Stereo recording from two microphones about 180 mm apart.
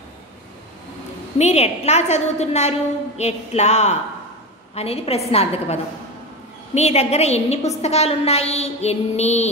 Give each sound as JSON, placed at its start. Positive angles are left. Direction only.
{"t": 1.4, "sound": "child singing", "side_deg": 35}